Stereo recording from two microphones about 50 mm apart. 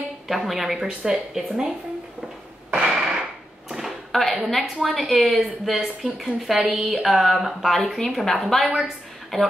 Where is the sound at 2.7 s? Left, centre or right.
Centre.